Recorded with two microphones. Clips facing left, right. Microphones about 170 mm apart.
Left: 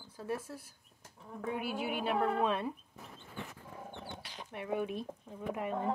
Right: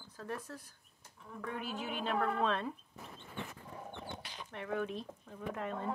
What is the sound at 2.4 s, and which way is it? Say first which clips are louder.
Speech: left 2 dB; 15° left (ahead or behind).